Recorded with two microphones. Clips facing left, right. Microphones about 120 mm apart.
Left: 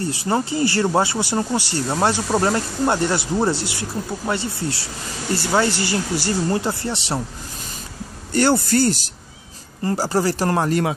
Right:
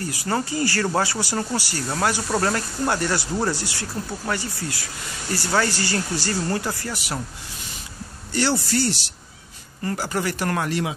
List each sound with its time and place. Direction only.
0.0 s speech: 25° left (ahead or behind)
8.3 s speech: 50° left (ahead or behind)
9.8 s speech: 35° left (ahead or behind)
10.7 s speech: 50° left (ahead or behind)